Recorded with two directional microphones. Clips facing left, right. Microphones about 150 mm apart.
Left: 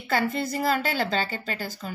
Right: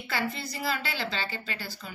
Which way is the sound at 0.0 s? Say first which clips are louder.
Left 7 dB; 45° left (ahead or behind).